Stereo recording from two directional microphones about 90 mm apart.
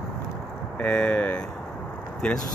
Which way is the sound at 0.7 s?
15° left (ahead or behind).